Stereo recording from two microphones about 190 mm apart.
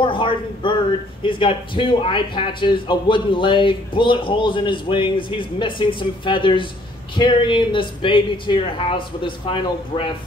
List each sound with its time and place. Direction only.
0.0 s a man's voice: 25° left (ahead or behind)